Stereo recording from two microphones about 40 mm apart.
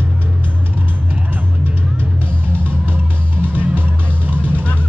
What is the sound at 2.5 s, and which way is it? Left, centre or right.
Music, right.